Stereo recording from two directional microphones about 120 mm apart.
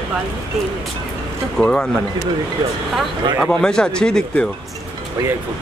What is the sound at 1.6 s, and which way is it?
Speech, 10° left (ahead or behind).